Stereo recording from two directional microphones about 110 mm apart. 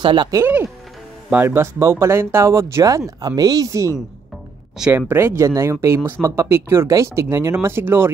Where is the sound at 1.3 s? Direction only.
20° right (ahead or behind).